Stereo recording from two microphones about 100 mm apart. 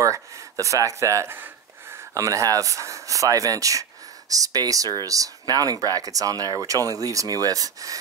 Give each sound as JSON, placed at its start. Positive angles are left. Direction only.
{"t": 0.0, "sound": "speech", "side_deg": -30}
{"t": 1.3, "sound": "gasp", "side_deg": -20}
{"t": 2.1, "sound": "speech", "side_deg": -35}